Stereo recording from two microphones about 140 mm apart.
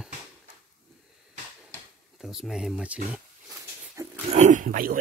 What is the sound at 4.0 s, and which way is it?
Dog, 25° right (ahead or behind).